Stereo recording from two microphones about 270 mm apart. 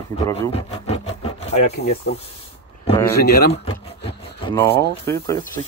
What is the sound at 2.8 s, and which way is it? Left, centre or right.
Speech, centre.